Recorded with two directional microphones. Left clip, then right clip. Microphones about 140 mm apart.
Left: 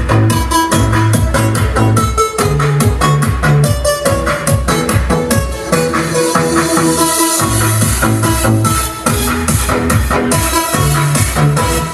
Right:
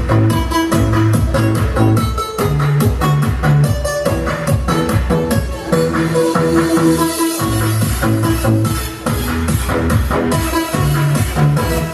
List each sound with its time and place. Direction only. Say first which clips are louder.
0.1 s music: left 3 dB; 15° left (ahead or behind)